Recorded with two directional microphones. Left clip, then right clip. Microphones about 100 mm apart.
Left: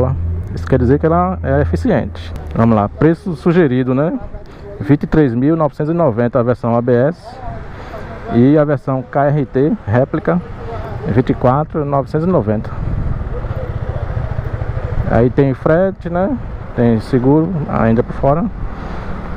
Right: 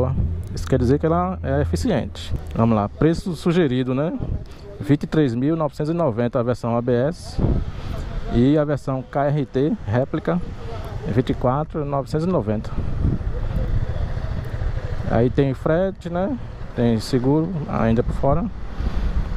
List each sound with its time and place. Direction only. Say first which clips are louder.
0.7 s speech: left 6 dB; 15° right (ahead or behind)
8.3 s speech: left 7 dB; 15° right (ahead or behind)
15.0 s speech: left 7 dB; 15° right (ahead or behind)